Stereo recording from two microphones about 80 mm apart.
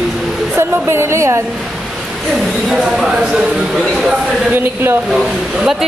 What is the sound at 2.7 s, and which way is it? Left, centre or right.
Speech, centre.